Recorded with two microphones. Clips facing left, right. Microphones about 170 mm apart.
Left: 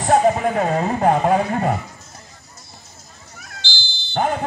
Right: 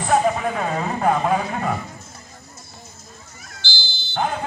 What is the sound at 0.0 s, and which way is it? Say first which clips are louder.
Speech: left 3 dB; 45° left (ahead or behind).